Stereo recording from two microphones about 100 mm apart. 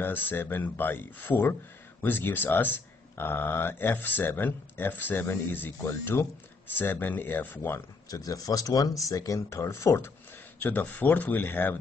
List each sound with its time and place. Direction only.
0.0 s speech: 20° left (ahead or behind)
8.1 s speech: 35° left (ahead or behind)
10.6 s speech: 15° left (ahead or behind)